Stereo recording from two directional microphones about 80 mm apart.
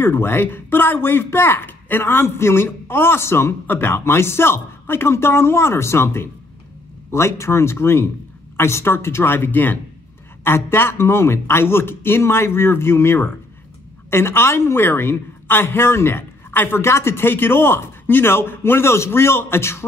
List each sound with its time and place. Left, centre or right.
0.0 s a man's voice: left